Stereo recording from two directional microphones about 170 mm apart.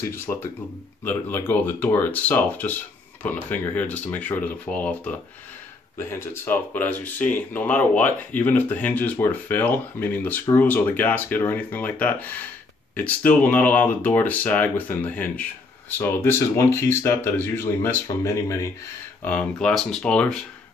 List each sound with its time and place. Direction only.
0.0 s speech: 15° left (ahead or behind)
19.2 s speech: 5° left (ahead or behind)